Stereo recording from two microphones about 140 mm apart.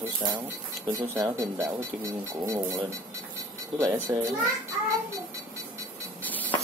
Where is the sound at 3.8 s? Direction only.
20° right (ahead or behind).